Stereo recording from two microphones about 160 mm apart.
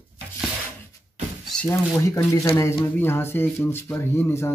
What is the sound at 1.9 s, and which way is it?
Speech, 20° left (ahead or behind).